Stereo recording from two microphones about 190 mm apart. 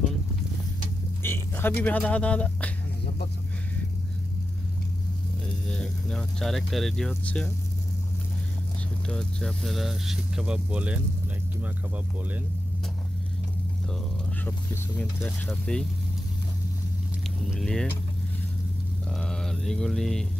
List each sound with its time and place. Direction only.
1.2 s speech: 10° left (ahead or behind)
5.7 s speech: 5° left (ahead or behind)
9.0 s speech: 5° left (ahead or behind)
14.4 s speech: 10° left (ahead or behind)
17.5 s speech: centre (ahead or behind)
19.0 s mantra: centre (ahead or behind)